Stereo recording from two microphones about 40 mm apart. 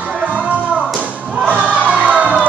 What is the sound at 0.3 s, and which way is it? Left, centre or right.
Music, right.